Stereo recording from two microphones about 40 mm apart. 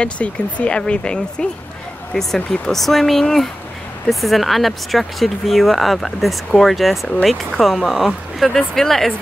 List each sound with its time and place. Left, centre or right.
0.0 s speech: left
2.8 s speech: centre